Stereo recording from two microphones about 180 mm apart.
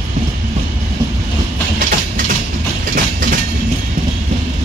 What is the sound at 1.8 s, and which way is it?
Train, 50° right (ahead or behind).